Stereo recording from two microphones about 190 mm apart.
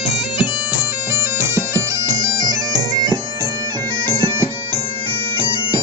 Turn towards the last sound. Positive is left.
turn(degrees=-25)  # may be behind; listen again after turning